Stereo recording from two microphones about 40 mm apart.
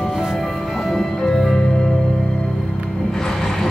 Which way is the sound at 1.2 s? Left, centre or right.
Centre.